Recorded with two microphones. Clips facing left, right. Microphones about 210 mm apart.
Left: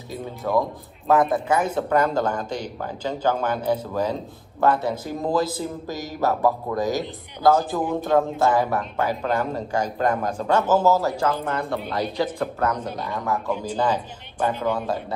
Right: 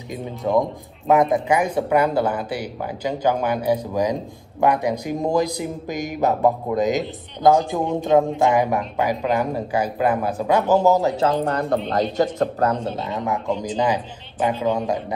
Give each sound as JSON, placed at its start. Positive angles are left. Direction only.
{"t": 0.1, "sound": "speech", "side_deg": -15}
{"t": 11.4, "sound": "speech", "side_deg": -40}